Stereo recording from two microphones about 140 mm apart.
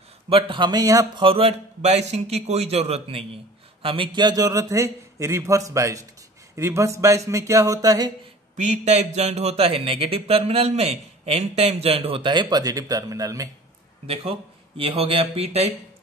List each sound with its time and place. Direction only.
0.3 s speech: 40° right (ahead or behind)
1.2 s a man's voice: 45° right (ahead or behind); by 8.1 s 25° right (ahead or behind)
8.5 s speech: 55° right (ahead or behind); by 13.5 s 25° right (ahead or behind)
14.0 s speech: 45° right (ahead or behind)